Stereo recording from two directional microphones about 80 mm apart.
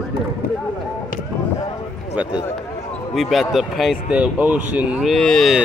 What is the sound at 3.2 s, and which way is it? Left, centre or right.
Speech, centre.